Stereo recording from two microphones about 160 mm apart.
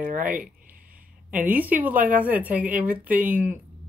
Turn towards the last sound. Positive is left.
turn(degrees=-10)  # may be behind; listen again after turning